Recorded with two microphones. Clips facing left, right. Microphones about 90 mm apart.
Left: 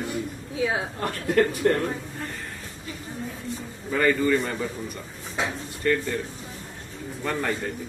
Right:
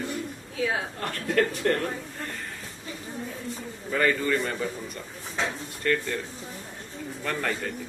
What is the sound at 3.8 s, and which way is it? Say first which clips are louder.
A man's voice: left 3 dB; centre (ahead or behind).